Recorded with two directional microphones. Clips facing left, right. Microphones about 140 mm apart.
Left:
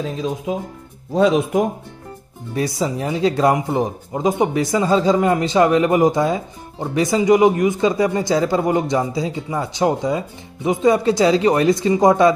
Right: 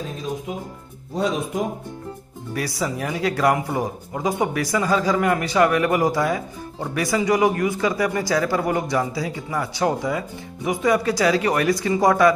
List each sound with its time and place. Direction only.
0.5 s speech: 90° left
2.5 s speech: 25° left (ahead or behind)